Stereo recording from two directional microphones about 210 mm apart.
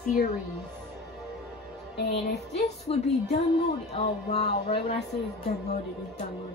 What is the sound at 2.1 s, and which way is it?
A woman's voice, 30° left (ahead or behind).